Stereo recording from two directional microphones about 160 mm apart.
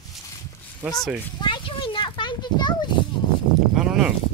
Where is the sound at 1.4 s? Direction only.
30° left (ahead or behind).